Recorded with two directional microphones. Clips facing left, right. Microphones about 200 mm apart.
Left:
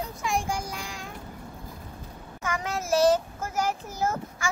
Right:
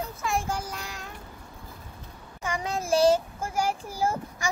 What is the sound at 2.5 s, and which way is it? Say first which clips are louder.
Child singing: right 1 dB; 30° right (ahead or behind).